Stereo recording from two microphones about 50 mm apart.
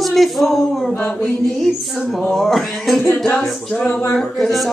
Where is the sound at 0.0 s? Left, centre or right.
Centre.